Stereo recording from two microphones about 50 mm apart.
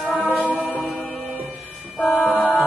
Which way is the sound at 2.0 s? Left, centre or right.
Centre.